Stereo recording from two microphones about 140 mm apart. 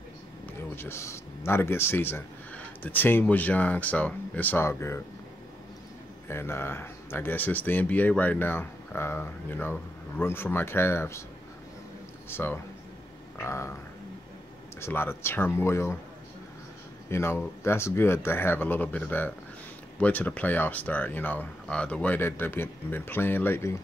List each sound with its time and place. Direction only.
0.7 s speech: 20° left (ahead or behind)
6.2 s speech: 15° left (ahead or behind)
12.3 s speech: 15° left (ahead or behind)
14.8 s speech: 15° left (ahead or behind)
17.1 s speech: 15° left (ahead or behind)